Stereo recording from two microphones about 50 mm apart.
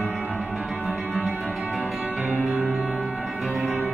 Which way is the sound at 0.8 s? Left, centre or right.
Right.